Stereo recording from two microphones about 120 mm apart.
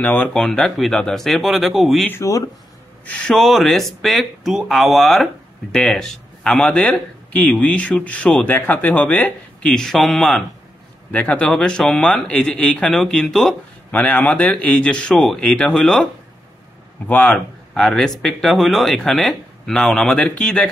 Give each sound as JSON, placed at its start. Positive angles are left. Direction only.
{"t": 0.0, "sound": "speech", "side_deg": 10}
{"t": 2.0, "sound": "speech", "side_deg": 25}
{"t": 3.1, "sound": "speech", "side_deg": 5}
{"t": 17.1, "sound": "speech", "side_deg": 10}